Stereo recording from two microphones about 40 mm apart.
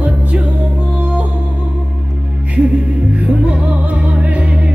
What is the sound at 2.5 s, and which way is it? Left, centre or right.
Music, right.